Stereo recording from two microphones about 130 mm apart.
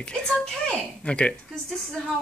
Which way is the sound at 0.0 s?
5° left (ahead or behind).